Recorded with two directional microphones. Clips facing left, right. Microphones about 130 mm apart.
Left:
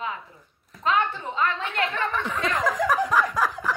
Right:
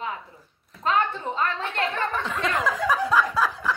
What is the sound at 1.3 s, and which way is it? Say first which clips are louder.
Speech: left 2 dB; 35° right (ahead or behind).